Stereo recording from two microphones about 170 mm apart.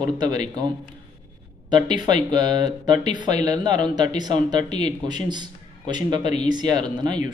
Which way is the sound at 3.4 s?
25° right (ahead or behind).